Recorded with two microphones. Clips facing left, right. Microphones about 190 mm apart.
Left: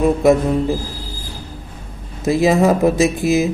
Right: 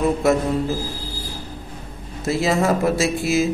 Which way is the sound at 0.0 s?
15° left (ahead or behind).